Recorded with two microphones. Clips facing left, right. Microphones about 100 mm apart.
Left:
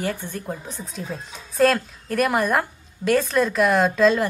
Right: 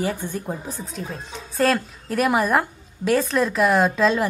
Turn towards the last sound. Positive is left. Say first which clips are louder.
# left 1 dB
turn(degrees=0)  # may be behind; listen again after turning